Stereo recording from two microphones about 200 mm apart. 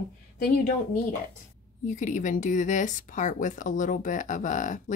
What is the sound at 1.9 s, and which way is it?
Speech, 40° left (ahead or behind).